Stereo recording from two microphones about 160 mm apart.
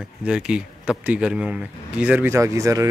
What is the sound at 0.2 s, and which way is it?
A man's voice, 5° right (ahead or behind).